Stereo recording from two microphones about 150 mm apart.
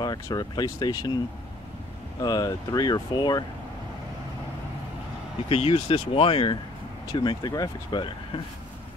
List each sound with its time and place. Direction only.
0.0 s speech: 25° left (ahead or behind)
2.2 s speech: 25° left (ahead or behind)
5.5 s speech: 35° left (ahead or behind)